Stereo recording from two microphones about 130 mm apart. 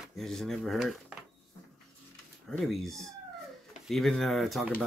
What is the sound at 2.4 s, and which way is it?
Speech, centre (ahead or behind).